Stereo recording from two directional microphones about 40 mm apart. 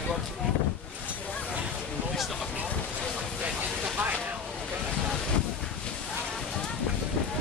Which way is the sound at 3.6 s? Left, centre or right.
Right.